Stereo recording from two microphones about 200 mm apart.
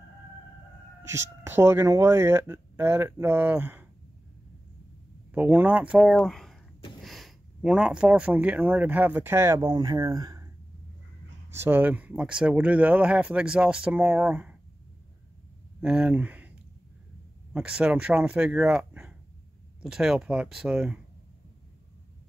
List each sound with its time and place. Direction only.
1.0 s speech: 15° right (ahead or behind)
5.3 s speech: 10° right (ahead or behind)
11.5 s speech: 10° right (ahead or behind)
15.8 s speech: 5° right (ahead or behind)